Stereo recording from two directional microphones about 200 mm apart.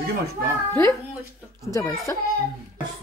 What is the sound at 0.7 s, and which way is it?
Speech, 15° left (ahead or behind).